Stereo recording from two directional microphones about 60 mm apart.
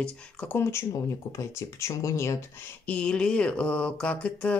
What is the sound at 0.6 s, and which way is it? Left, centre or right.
Speech, left.